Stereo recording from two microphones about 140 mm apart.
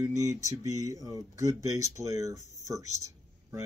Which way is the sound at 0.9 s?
25° right (ahead or behind).